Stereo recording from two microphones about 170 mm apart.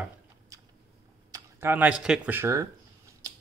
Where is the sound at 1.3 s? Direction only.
15° right (ahead or behind).